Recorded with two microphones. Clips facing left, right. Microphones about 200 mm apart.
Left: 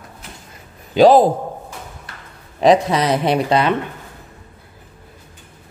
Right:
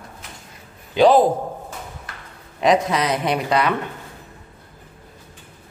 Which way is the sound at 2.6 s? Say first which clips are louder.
Left 4 dB; 30° left (ahead or behind).